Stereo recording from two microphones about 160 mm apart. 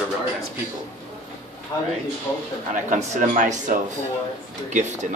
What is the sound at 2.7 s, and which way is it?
Speech, 50° right (ahead or behind).